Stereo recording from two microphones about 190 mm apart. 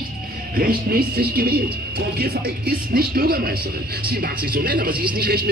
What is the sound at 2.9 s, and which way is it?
Speech, 55° right (ahead or behind).